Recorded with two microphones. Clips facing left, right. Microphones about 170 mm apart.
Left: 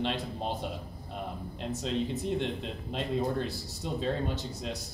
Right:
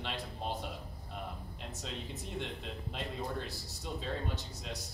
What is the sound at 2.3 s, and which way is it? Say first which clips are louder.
A man's voice: left 8 dB; 25° left (ahead or behind).